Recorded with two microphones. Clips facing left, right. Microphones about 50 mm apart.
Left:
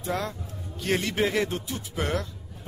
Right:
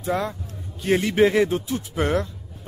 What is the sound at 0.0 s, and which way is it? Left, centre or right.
Speech, centre.